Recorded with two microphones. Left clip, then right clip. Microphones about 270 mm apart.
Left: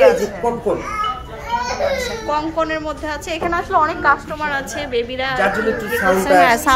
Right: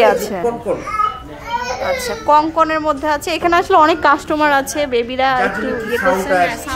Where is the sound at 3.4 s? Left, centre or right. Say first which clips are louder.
Right 6 dB; right.